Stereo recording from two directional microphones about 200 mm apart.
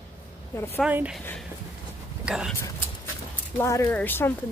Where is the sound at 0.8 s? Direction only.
5° right (ahead or behind).